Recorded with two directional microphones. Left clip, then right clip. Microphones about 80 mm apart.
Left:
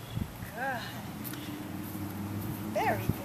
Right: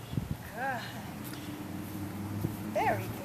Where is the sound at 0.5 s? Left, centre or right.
Centre.